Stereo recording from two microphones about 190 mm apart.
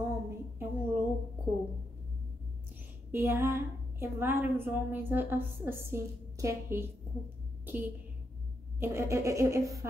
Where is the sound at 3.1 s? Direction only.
15° right (ahead or behind).